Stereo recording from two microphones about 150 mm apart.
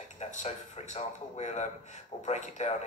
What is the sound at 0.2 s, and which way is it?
Speech, 50° left (ahead or behind).